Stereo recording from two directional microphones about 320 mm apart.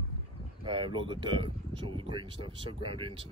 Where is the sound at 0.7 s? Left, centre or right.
Centre.